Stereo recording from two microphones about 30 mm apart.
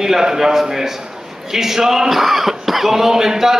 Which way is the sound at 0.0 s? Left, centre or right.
Centre.